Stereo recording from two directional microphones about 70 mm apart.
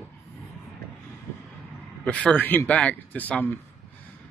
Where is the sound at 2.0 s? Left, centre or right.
Centre.